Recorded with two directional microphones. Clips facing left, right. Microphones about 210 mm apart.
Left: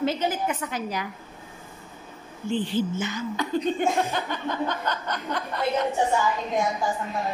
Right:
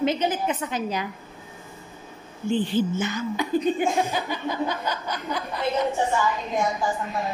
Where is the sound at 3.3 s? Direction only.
10° right (ahead or behind).